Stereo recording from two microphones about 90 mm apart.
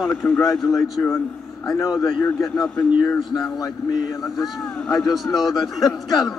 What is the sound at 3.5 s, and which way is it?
Speech, 40° left (ahead or behind).